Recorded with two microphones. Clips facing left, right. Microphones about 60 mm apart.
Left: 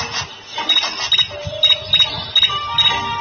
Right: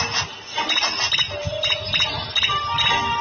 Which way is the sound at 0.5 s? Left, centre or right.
Centre.